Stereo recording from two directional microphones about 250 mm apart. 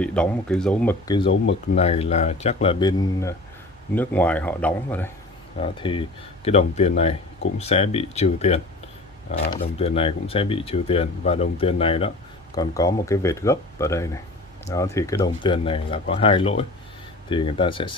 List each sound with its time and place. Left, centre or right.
0.0 s speech: centre
1.0 s speech: centre
1.3 s speech: left
1.8 s speech: left; by 5.1 s centre
5.6 s speech: centre